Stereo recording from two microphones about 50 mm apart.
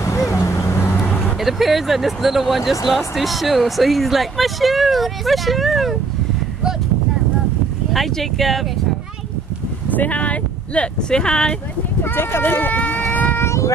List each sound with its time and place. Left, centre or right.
0.0 s vehicle: left
0.9 s vehicle: left
1.4 s speech: centre
7.9 s speech: centre
9.8 s speech: left; by 11.5 s centre
12.0 s a sound: left
13.4 s child singing: left